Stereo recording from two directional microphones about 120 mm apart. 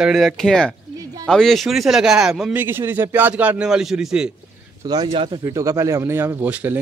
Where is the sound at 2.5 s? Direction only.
20° right (ahead or behind).